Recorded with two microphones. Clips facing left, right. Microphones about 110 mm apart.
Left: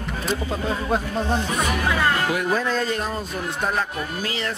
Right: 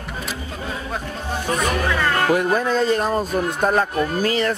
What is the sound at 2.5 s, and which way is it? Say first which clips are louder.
Speech: right 4 dB; 20° right (ahead or behind).